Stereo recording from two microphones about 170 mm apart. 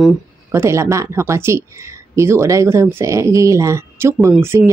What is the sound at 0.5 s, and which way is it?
Speech, 15° right (ahead or behind).